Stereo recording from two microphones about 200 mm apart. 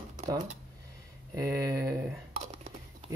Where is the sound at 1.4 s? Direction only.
15° right (ahead or behind).